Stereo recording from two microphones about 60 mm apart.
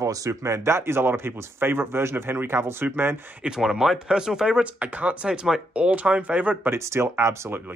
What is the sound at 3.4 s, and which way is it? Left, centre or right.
Speech, centre.